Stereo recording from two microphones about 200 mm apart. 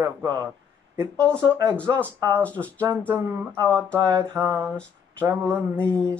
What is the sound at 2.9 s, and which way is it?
Speech, 10° right (ahead or behind).